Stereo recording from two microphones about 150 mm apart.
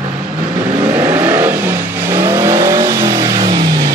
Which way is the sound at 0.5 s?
10° right (ahead or behind).